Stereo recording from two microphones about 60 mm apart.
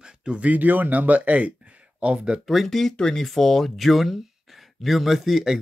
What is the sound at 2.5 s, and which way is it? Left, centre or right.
Speech, centre.